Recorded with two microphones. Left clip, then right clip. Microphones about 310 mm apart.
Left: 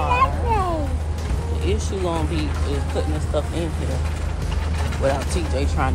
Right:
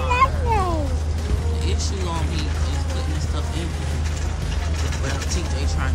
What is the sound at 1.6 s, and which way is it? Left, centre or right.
Speech, centre.